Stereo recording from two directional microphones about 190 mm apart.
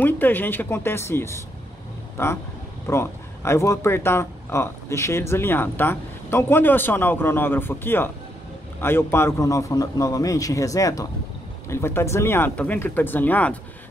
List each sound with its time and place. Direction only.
0.0 s speech: 10° left (ahead or behind)